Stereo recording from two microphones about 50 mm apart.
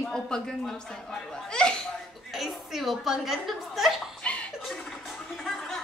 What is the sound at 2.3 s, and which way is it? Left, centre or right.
Chuckle, centre.